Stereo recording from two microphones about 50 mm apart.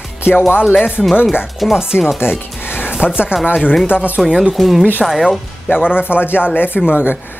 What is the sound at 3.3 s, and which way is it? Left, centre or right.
Speech, right.